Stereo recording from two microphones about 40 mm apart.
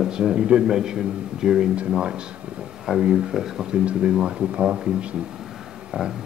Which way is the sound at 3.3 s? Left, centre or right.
Centre.